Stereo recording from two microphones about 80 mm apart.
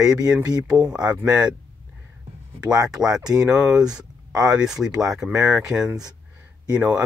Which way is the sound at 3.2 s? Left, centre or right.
Right.